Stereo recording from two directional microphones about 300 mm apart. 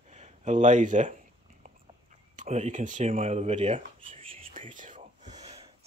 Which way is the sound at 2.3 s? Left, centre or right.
Right.